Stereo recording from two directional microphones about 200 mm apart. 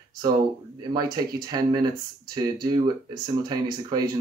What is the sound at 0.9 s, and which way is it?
Speech, 20° right (ahead or behind).